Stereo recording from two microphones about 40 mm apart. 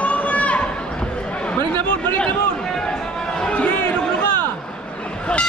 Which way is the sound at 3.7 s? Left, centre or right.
Left.